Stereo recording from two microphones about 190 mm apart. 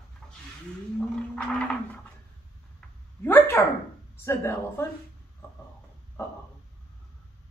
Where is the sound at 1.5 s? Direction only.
5° left (ahead or behind).